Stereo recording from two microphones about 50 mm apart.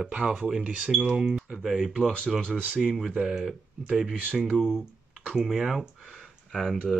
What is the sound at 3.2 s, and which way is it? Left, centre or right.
Speech, centre.